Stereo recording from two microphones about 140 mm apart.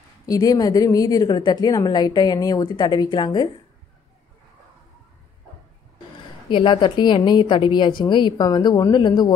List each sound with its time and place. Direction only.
0.3 s a woman's voice: 25° left (ahead or behind)
6.5 s a woman's voice: 35° left (ahead or behind)